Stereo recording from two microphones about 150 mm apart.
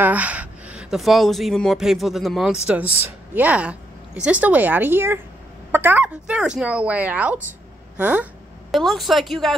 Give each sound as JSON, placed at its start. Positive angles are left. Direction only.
{"t": 0.0, "sound": "speech", "side_deg": -10}
{"t": 2.8, "sound": "speech", "side_deg": 40}
{"t": 3.3, "sound": "a woman's voice", "side_deg": -10}